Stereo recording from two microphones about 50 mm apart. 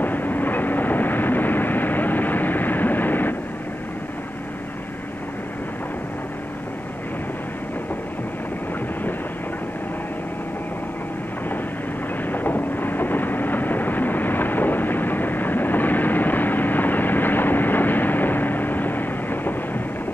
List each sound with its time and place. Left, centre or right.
0.0 s vehicle: left
12.3 s vehicle: left